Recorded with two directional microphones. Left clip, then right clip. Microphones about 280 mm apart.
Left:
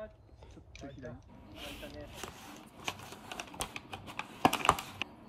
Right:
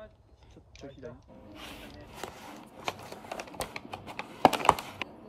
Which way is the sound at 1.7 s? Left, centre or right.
Centre.